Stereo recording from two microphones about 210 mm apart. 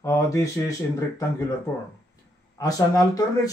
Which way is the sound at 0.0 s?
15° left (ahead or behind).